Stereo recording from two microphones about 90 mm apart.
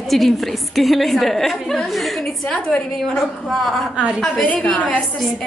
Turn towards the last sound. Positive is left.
turn(degrees=15)  # may be behind; listen again after turning